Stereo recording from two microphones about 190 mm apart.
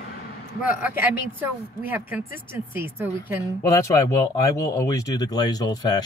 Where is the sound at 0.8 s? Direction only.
10° right (ahead or behind).